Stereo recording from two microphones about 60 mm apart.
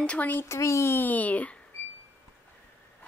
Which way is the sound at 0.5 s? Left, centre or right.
Left.